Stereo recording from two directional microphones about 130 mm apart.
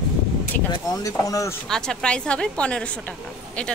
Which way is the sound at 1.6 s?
5° left (ahead or behind).